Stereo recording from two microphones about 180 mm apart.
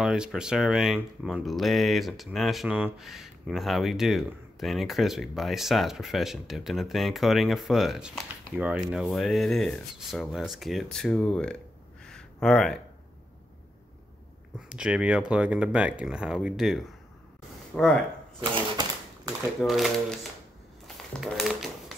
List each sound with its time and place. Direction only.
0.0 s speech: 5° right (ahead or behind)
12.0 s a sound: 5° left (ahead or behind)
14.7 s speech: 5° right (ahead or behind)
18.4 s typewriter: 25° right (ahead or behind)
19.6 s speech: centre (ahead or behind)
20.8 s crumpling: centre (ahead or behind)